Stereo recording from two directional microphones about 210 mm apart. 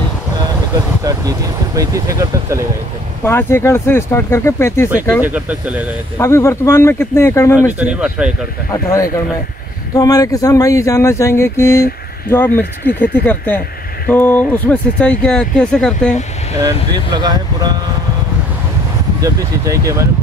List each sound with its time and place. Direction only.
1.0 s speech: 15° right (ahead or behind)
3.3 s speech: 10° left (ahead or behind)
5.2 s speech: 5° right (ahead or behind)
6.1 s speech: 10° left (ahead or behind)
7.8 s speech: 5° right (ahead or behind)
8.8 s speech: 15° left (ahead or behind)
16.6 s speech: 20° right (ahead or behind)
19.2 s speech: 15° right (ahead or behind)